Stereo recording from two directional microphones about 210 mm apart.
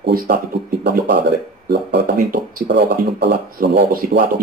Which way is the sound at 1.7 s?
50° right (ahead or behind).